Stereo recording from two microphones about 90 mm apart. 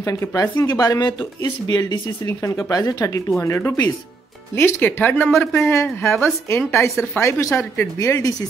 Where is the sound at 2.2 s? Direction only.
35° left (ahead or behind).